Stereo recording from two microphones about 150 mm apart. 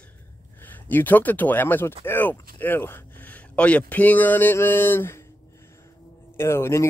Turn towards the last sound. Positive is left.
turn(degrees=15)  # may be behind; listen again after turning